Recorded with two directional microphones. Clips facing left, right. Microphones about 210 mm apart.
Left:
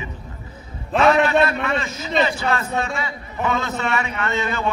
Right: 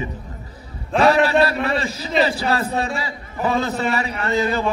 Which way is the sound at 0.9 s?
35° right (ahead or behind).